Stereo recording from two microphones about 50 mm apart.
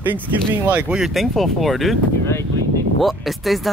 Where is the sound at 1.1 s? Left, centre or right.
Centre.